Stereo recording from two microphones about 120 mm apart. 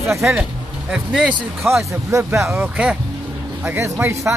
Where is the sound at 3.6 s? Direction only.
25° right (ahead or behind).